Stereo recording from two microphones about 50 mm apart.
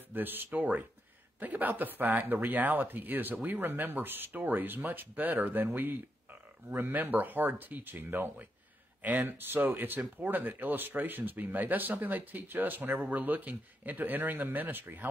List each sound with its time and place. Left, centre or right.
0.1 s speech: right